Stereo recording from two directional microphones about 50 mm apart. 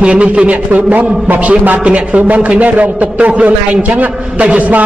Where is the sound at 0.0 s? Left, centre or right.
Right.